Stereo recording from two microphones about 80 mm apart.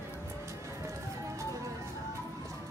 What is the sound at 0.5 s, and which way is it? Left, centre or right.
Music, right.